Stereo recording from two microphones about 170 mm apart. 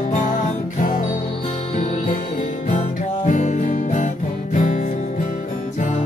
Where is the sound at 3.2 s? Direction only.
45° left (ahead or behind).